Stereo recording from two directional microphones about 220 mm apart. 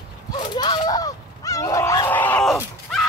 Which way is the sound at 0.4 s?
20° left (ahead or behind).